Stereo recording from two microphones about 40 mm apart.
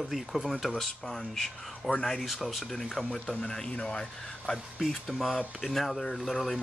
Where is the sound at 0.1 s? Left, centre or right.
Centre.